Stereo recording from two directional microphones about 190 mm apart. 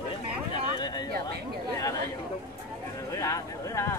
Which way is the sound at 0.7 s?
20° left (ahead or behind).